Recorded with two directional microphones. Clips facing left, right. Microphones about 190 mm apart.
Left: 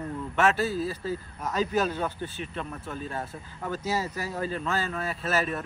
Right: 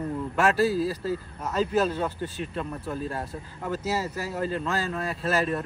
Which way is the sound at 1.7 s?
30° right (ahead or behind).